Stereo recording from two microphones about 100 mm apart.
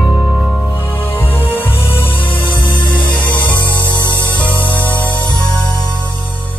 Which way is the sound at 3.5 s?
50° left (ahead or behind).